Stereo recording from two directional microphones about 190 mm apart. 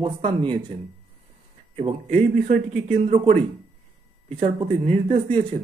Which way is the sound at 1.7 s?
35° right (ahead or behind).